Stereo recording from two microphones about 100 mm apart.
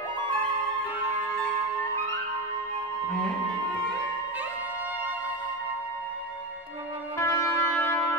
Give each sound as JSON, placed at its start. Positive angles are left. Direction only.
{"t": 7.2, "sound": "music", "side_deg": 25}